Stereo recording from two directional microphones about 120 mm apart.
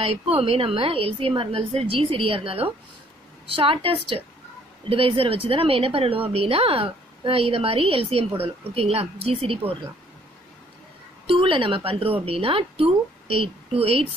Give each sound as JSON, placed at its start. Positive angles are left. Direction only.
{"t": 0.0, "sound": "speech", "side_deg": -55}
{"t": 11.2, "sound": "speech", "side_deg": -45}